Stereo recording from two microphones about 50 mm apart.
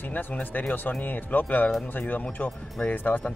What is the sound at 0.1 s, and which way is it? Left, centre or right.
Speech, left.